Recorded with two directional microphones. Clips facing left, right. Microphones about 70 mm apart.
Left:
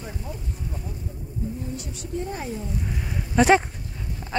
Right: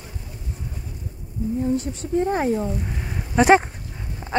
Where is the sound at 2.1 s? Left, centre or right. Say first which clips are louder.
Right 10 dB; right.